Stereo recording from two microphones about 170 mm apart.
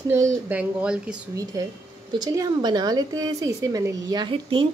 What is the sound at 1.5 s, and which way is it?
Speech, 20° right (ahead or behind).